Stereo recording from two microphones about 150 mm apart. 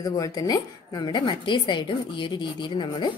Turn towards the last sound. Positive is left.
turn(degrees=30)  # may be behind; listen again after turning